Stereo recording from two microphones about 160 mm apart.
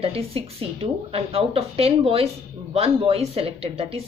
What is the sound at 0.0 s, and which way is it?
A woman's voice, 35° right (ahead or behind).